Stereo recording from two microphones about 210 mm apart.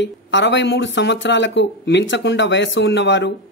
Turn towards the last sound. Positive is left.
turn(degrees=60)  # may be behind; listen again after turning